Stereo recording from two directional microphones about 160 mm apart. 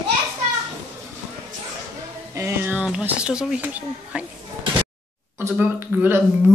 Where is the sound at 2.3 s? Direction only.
15° right (ahead or behind).